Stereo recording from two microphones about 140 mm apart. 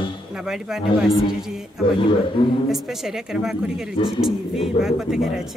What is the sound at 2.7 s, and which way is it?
Speech, 5° right (ahead or behind).